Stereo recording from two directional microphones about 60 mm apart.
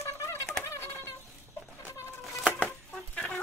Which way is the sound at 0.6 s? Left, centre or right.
Left.